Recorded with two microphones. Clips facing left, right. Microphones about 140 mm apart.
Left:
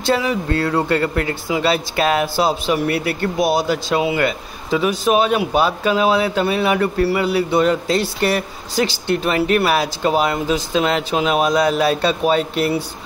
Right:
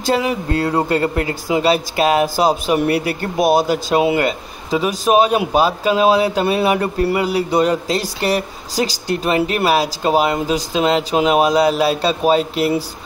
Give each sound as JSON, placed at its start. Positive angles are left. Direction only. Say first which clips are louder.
{"t": 0.5, "sound": "speech", "louder": "right 1 dB", "side_deg": -15}
{"t": 4.2, "sound": "speech", "louder": "right 1 dB", "side_deg": -35}
{"t": 7.3, "sound": "speech", "louder": "even", "side_deg": -35}
{"t": 9.3, "sound": "speech", "louder": "right 1 dB", "side_deg": -30}